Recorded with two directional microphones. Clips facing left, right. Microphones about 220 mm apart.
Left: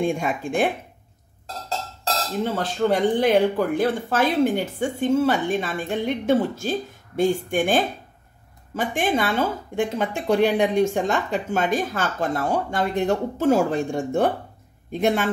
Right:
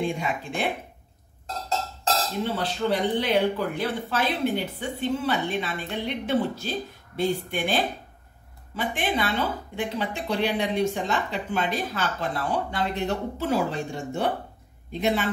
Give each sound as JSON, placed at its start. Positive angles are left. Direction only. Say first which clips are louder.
{"t": 0.0, "sound": "speech", "louder": "left 4 dB", "side_deg": 50}
{"t": 2.4, "sound": "speech", "louder": "left 6 dB", "side_deg": 45}